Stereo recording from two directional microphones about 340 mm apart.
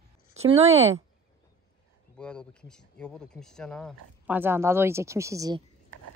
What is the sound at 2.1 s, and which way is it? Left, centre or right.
Speech, centre.